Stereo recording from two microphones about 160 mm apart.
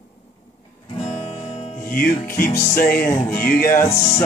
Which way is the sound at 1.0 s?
40° left (ahead or behind).